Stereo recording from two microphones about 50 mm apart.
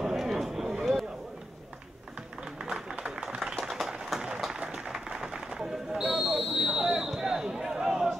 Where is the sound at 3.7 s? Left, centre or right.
Centre.